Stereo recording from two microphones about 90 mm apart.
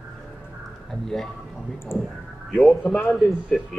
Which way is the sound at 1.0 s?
5° left (ahead or behind).